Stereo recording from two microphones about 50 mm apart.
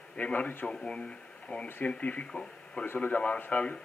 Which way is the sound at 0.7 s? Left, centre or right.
Left.